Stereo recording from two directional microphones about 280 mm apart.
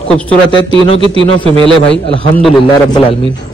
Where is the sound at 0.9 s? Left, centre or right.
Centre.